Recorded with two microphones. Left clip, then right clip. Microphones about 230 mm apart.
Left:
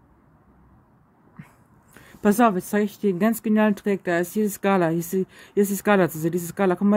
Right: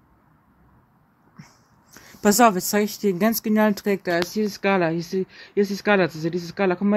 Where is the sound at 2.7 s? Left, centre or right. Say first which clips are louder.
Right 1 dB; centre.